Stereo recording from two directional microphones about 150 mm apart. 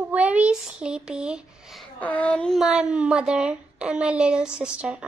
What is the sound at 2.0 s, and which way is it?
Speech, 10° left (ahead or behind).